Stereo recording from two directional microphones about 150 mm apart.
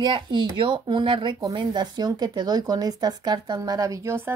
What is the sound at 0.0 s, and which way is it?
Speech, 30° right (ahead or behind).